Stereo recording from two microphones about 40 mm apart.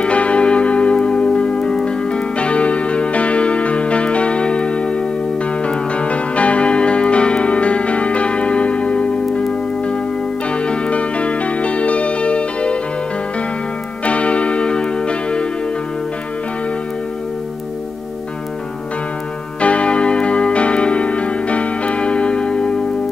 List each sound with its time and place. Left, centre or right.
0.0 s church bell: left
5.6 s music: left
10.5 s music: left
14.0 s music: left
19.6 s music: left